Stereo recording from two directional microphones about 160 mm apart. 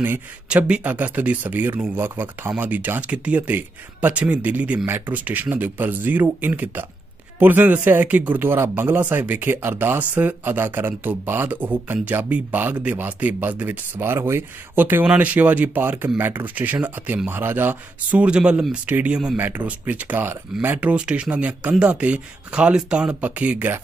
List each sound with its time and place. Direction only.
0.0 s speech: 10° right (ahead or behind)